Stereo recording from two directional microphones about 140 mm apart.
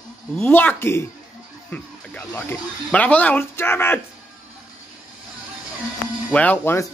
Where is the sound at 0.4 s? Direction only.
15° left (ahead or behind).